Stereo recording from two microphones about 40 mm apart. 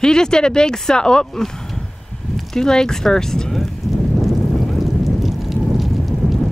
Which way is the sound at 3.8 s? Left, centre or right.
Left.